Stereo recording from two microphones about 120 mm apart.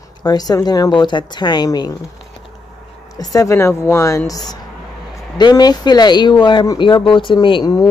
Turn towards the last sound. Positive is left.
turn(degrees=35)  # may be behind; listen again after turning